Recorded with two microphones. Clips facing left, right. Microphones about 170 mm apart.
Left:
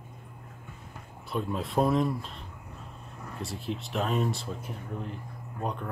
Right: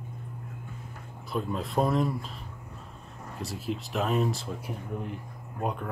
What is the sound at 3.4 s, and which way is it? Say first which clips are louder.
Speech: right 2 dB; centre (ahead or behind).